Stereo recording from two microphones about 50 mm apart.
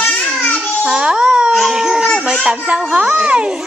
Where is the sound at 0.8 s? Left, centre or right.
Centre.